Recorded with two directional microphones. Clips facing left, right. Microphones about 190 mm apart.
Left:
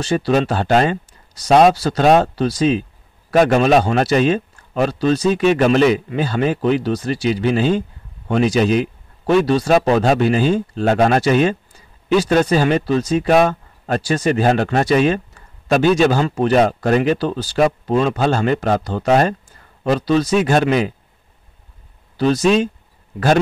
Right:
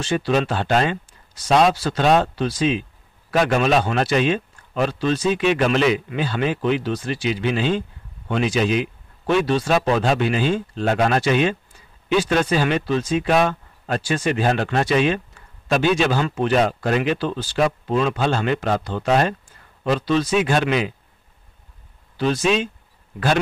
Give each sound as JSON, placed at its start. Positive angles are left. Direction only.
{"t": 0.0, "sound": "a man's voice", "side_deg": 40}
{"t": 22.1, "sound": "speech", "side_deg": 40}